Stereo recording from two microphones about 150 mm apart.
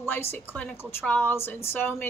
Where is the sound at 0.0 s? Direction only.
15° left (ahead or behind).